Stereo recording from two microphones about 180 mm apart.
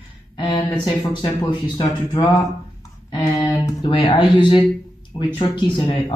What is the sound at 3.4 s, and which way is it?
Speech, 25° left (ahead or behind).